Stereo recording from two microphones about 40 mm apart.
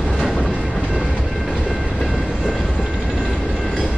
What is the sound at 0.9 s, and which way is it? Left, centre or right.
Train, right.